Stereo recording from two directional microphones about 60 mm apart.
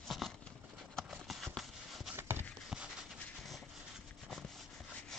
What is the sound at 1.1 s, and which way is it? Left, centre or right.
Clip-clop, centre.